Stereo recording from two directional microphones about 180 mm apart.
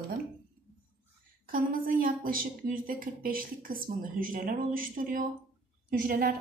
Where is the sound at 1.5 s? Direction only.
50° right (ahead or behind).